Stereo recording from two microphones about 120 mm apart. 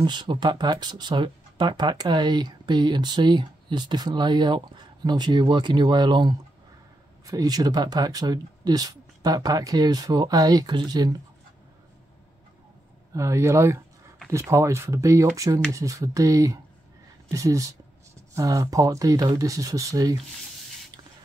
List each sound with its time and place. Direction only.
0.0 s speech: 40° right (ahead or behind)
13.1 s speech: 25° right (ahead or behind)